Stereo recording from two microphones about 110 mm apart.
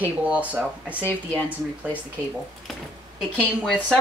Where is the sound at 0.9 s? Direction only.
20° left (ahead or behind).